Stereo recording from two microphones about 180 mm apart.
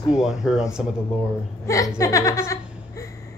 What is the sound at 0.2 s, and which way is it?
Speech, centre (ahead or behind).